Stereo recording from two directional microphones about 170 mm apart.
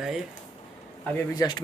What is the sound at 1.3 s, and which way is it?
Speech, 25° left (ahead or behind).